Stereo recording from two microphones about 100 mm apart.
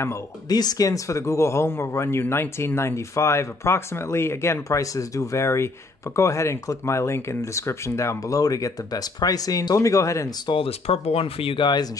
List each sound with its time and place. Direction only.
0.5 s speech: 40° left (ahead or behind)
10.4 s speech: 55° left (ahead or behind)
10.7 s speech: 90° left; by 11.9 s 50° left (ahead or behind)